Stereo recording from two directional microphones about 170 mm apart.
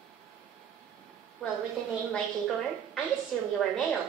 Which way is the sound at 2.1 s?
5° left (ahead or behind).